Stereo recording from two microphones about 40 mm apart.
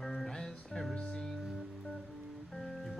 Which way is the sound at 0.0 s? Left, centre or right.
Centre.